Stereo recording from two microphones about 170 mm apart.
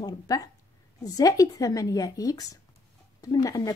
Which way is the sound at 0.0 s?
20° left (ahead or behind).